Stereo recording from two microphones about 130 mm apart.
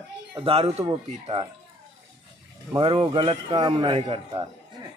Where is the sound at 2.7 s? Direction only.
40° right (ahead or behind).